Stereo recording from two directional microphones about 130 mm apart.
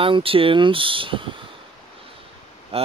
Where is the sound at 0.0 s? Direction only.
45° right (ahead or behind).